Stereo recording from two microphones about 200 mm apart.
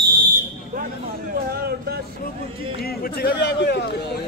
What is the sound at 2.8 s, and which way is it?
A man's voice, 50° left (ahead or behind).